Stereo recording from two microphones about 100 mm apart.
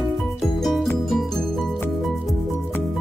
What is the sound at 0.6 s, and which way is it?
Music, centre (ahead or behind).